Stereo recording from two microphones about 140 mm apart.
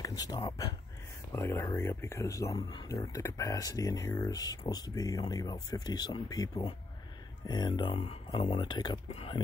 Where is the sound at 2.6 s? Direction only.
35° left (ahead or behind).